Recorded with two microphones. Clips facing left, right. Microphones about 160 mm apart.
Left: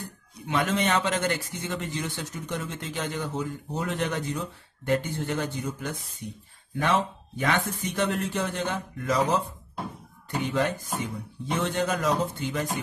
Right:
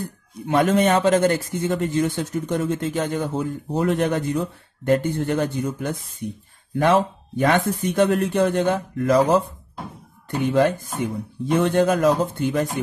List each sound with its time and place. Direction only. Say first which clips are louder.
0.5 s a man's voice: right 8 dB; 50° right (ahead or behind)
10.4 s a man's voice: right 9 dB; 55° right (ahead or behind)